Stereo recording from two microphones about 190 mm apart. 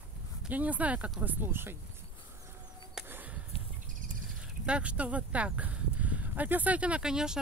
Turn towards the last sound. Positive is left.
turn(degrees=-5)  # may be behind; listen again after turning